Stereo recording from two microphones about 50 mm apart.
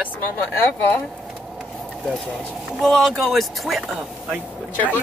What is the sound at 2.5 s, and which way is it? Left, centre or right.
Speech, centre.